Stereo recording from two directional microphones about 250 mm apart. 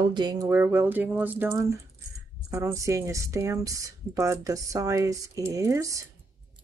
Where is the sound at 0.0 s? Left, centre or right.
Centre.